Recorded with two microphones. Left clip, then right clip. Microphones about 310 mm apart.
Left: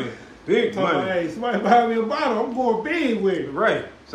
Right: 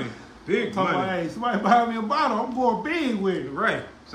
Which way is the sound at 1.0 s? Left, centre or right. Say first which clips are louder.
Left 3 dB; centre.